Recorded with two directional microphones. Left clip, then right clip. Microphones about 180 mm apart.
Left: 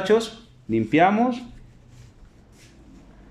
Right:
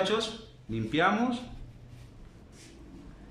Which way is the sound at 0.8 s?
30° left (ahead or behind).